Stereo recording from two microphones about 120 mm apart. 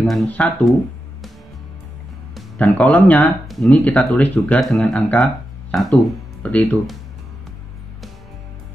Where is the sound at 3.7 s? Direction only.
10° left (ahead or behind).